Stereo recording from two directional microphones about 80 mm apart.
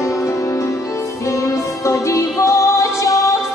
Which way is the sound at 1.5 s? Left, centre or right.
Left.